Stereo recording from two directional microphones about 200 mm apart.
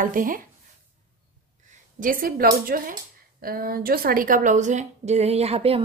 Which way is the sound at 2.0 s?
45° right (ahead or behind).